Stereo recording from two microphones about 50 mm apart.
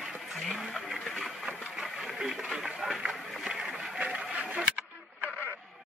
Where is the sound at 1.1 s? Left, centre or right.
Centre.